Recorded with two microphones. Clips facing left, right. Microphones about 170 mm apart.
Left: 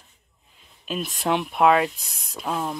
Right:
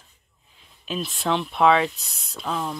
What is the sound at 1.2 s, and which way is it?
Speech, 10° left (ahead or behind).